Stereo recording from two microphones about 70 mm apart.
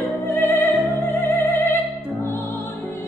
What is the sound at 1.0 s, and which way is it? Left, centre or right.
Opera, left.